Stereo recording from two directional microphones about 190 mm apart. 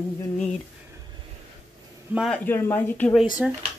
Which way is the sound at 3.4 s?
Centre (ahead or behind).